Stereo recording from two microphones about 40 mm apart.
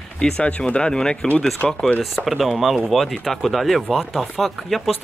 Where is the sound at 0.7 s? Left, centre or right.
Left.